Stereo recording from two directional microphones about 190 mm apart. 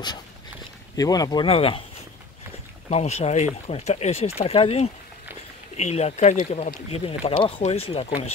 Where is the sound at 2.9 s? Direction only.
35° left (ahead or behind).